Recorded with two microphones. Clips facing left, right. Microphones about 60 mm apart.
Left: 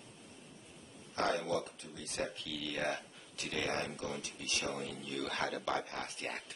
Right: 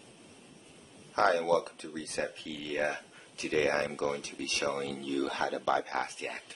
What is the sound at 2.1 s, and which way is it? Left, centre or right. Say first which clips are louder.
Speech: right 2 dB; right.